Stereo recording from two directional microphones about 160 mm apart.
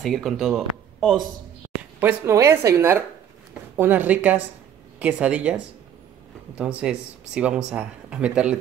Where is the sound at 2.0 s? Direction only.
15° right (ahead or behind).